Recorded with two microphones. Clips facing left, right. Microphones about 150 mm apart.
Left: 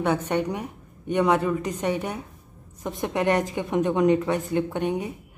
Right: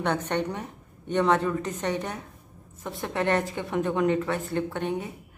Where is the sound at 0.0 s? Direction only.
10° left (ahead or behind).